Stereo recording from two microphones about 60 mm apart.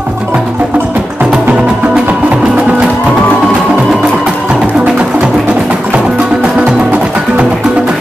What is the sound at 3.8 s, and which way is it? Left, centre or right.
Music, centre.